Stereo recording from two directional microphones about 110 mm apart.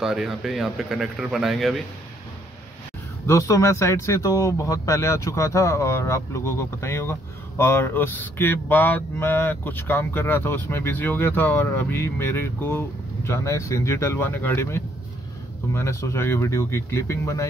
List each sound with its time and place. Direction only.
0.0 s speech: 5° right (ahead or behind)
3.3 s speech: 30° left (ahead or behind)